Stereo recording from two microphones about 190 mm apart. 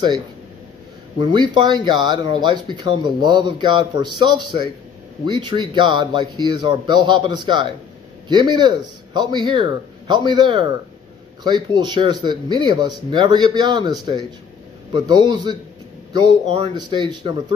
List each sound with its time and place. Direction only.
1.2 s speech: 25° right (ahead or behind)